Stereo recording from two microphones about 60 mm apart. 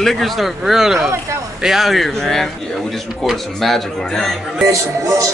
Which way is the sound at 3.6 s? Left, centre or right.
Centre.